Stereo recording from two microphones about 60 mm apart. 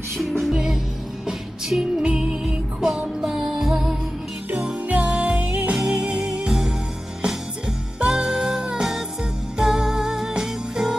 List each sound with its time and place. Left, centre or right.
0.2 s music: centre
1.2 s music: centre
4.6 s music: right
8.0 s music: centre